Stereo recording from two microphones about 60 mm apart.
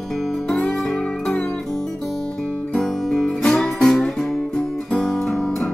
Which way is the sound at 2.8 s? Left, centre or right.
Centre.